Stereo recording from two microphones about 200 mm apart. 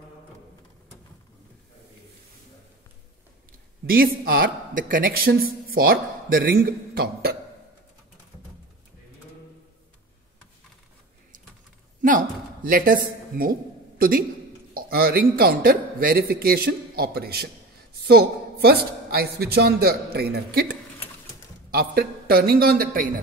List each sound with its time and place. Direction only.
3.8 s speech: 45° right (ahead or behind)
12.0 s a sound: 45° right (ahead or behind)
14.7 s a man's voice: 50° right (ahead or behind)